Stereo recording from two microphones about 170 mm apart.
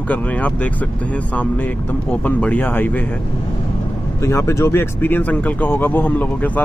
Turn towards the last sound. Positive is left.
turn(degrees=10)  # may be behind; listen again after turning